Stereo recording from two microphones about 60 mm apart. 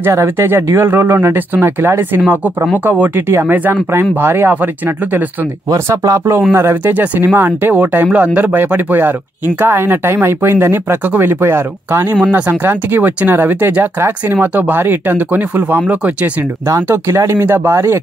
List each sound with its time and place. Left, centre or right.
0.0 s speech: right
2.2 s speech: right
5.9 s speech: right
6.8 s speech: right
12.2 s speech: right
16.9 s speech: right